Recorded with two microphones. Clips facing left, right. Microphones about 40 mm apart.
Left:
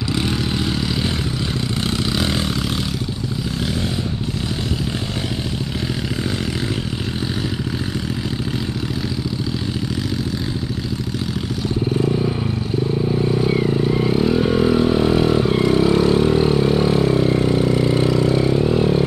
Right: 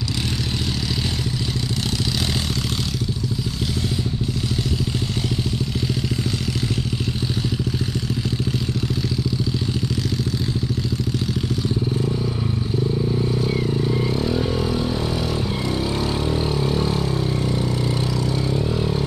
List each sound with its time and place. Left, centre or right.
12.0 s vehicle: left